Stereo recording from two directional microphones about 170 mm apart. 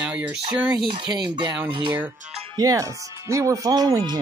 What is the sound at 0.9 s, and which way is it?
Speech, 25° right (ahead or behind).